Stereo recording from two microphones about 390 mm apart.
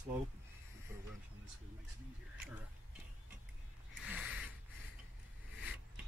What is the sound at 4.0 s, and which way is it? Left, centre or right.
Mechanisms, centre.